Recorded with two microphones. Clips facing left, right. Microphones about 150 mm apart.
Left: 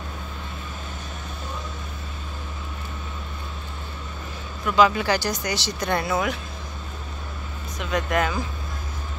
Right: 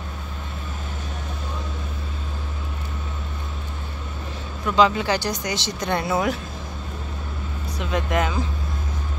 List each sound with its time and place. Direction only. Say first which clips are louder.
4.6 s speech: even; 25° right (ahead or behind)
7.8 s speech: even; 25° right (ahead or behind)